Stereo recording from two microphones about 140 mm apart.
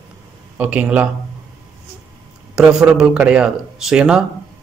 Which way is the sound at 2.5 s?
5° right (ahead or behind).